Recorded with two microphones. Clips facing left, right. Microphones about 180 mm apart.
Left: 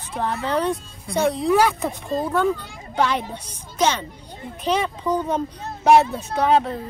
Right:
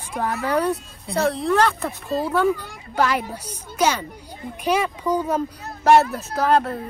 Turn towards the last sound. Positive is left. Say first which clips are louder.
# left 1 dB
turn(degrees=0)  # may be behind; listen again after turning